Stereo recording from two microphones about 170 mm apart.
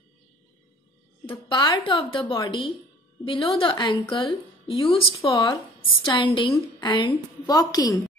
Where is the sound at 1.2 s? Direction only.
25° left (ahead or behind).